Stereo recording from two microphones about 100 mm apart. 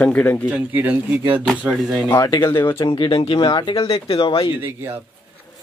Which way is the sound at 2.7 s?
50° left (ahead or behind).